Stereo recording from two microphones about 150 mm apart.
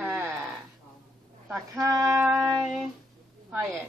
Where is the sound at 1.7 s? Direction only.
20° right (ahead or behind).